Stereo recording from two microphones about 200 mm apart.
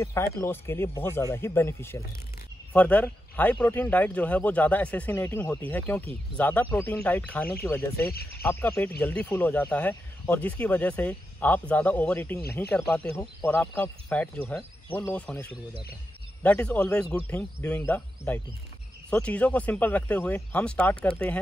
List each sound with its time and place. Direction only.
0.0 s speech: 15° left (ahead or behind)
8.0 s speech: 50° left (ahead or behind)
8.4 s speech: 10° left (ahead or behind)